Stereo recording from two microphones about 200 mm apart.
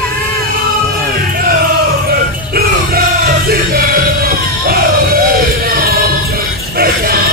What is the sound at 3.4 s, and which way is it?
Music, 45° right (ahead or behind).